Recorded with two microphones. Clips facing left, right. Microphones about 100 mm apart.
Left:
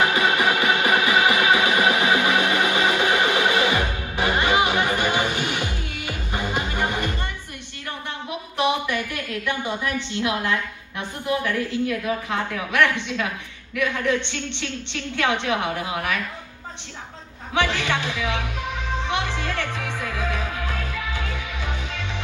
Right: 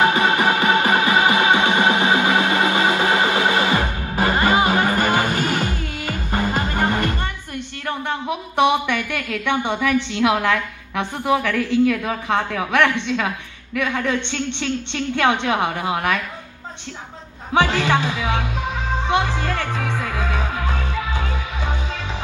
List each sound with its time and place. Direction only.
0.0 s music: 30° right (ahead or behind); by 7.2 s 50° right (ahead or behind)
8.5 s a woman's voice: 65° right (ahead or behind); by 16.2 s 50° right (ahead or behind)
17.6 s music: 45° right (ahead or behind)